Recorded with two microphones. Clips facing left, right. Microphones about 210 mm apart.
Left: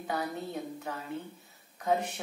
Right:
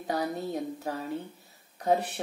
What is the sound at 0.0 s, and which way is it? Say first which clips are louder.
Speech: right 4 dB; 40° right (ahead or behind).